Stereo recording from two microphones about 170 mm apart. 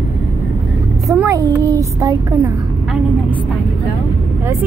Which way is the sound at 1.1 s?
20° right (ahead or behind).